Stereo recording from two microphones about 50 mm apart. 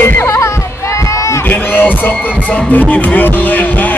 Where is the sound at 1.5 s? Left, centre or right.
Left.